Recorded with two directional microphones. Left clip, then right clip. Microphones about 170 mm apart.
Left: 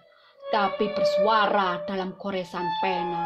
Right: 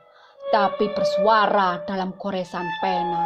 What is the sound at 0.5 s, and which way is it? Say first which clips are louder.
A woman's voice: right 4 dB; 10° right (ahead or behind).